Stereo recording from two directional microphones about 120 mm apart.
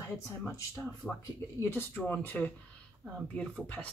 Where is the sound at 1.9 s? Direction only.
15° left (ahead or behind).